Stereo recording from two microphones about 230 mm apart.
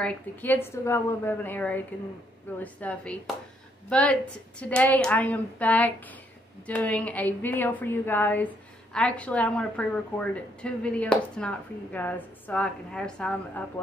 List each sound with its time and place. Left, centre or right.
0.0 s a woman's voice: centre